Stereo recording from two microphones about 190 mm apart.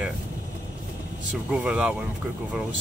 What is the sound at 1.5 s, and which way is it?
Speech, 5° right (ahead or behind).